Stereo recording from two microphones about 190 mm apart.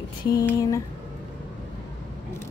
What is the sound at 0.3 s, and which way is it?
Speech, 20° left (ahead or behind).